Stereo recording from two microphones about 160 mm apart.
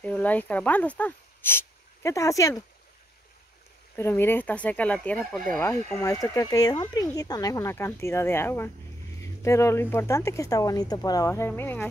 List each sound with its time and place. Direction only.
0.0 s speech: 10° left (ahead or behind)
3.9 s speech: 15° left (ahead or behind)
5.9 s speech: 20° left (ahead or behind)